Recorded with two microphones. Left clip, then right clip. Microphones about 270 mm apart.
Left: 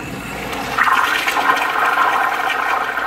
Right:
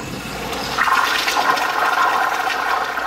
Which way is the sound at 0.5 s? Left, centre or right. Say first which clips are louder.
Left 2 dB; centre.